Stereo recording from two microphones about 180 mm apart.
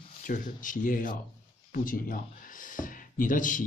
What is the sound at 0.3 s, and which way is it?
Speech, 45° left (ahead or behind).